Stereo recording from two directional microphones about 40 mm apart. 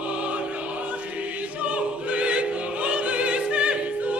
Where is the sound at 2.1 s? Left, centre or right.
Right.